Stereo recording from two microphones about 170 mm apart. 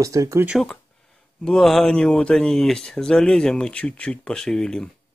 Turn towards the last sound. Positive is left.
turn(degrees=5)  # may be behind; listen again after turning